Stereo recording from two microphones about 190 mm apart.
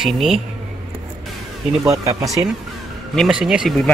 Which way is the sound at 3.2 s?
5° right (ahead or behind).